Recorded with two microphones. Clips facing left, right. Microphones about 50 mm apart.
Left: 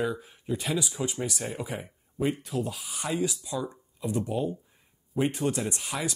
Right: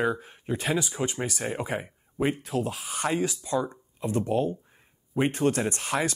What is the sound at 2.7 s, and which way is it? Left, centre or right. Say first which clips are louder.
Speech: right 5 dB; right.